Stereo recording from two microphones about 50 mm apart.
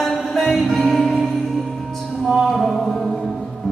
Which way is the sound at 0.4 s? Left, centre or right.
Centre.